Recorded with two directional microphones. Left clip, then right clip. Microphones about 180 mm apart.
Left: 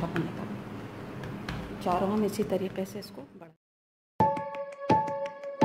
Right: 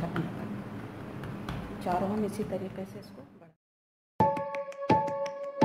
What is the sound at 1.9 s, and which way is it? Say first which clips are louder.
Speech: left 3 dB; 35° left (ahead or behind).